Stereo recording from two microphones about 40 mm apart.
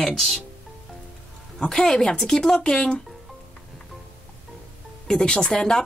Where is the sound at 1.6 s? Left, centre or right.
Centre.